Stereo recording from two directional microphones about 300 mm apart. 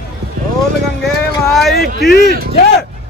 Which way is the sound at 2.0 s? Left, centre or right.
Left.